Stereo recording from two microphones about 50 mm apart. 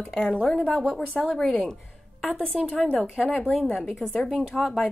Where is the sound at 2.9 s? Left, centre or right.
Centre.